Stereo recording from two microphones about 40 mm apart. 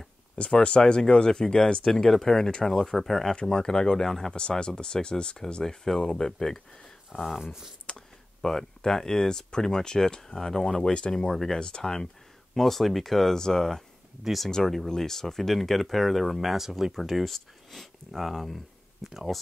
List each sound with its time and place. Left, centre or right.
0.4 s speech: left
1.8 s speech: centre
4.3 s speech: left
7.3 s speech: centre
7.8 s speech: centre
12.5 s speech: centre
14.2 s speech: centre
16.9 s speech: centre